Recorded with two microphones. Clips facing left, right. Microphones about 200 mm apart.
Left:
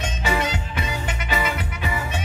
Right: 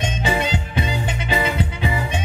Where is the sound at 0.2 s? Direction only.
30° right (ahead or behind).